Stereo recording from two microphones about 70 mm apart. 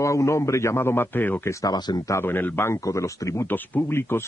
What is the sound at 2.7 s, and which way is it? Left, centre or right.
Speech, left.